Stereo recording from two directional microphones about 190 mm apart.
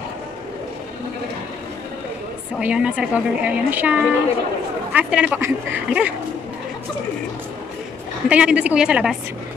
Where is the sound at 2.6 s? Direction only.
5° right (ahead or behind).